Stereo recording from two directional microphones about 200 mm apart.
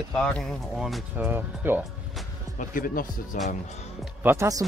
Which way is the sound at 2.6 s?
45° left (ahead or behind).